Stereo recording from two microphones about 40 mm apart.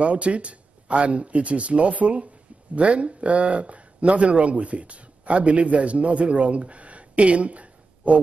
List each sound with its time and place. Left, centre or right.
0.0 s speech: right